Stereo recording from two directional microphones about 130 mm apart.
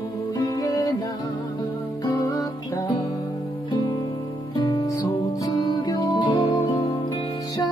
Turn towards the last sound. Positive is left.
turn(degrees=30)  # may be behind; listen again after turning